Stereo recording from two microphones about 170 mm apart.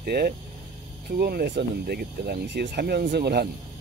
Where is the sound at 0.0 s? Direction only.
65° right (ahead or behind); by 3.0 s 90° right.